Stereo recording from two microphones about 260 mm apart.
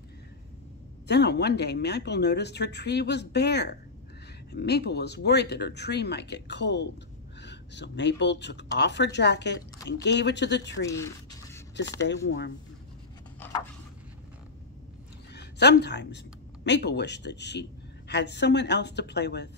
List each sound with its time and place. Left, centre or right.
1.0 s a woman's voice: left
10.9 s a sound: centre
12.0 s a woman's voice: left
15.3 s a woman's voice: left